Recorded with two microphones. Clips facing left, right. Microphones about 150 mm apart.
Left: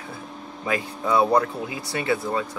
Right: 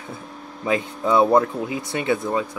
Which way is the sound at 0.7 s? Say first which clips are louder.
Right 3 dB; 20° right (ahead or behind).